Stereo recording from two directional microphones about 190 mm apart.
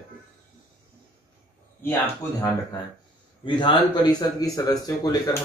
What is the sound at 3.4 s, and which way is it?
Speech, 25° left (ahead or behind).